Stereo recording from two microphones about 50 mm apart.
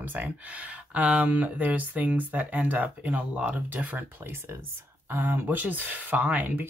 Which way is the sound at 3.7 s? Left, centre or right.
Right.